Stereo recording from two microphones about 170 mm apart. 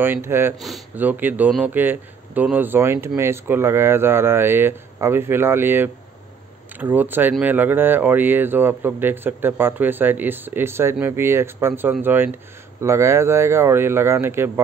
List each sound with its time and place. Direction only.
0.0 s speech: 15° right (ahead or behind)
0.6 s speech: centre (ahead or behind)
0.9 s speech: 10° right (ahead or behind)